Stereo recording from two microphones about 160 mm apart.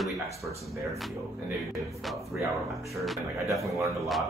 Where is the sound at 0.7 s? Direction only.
20° right (ahead or behind).